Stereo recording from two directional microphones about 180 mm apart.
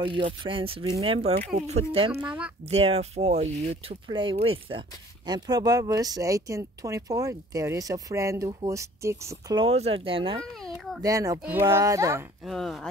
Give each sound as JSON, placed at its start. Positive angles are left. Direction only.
{"t": 0.0, "sound": "speech", "side_deg": -30}
{"t": 9.7, "sound": "speech", "side_deg": -35}
{"t": 10.4, "sound": "a sound", "side_deg": 0}
{"t": 11.0, "sound": "speech", "side_deg": -20}
{"t": 12.4, "sound": "speech", "side_deg": 0}